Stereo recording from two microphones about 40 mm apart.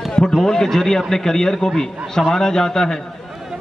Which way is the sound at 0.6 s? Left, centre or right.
Centre.